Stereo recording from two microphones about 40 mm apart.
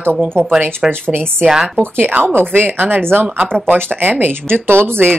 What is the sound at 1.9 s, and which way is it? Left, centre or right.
Speech, right.